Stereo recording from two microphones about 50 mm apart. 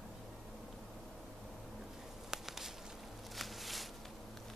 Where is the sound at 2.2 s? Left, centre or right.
Centre.